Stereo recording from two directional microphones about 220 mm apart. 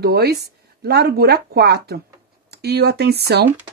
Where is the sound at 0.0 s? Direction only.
45° right (ahead or behind).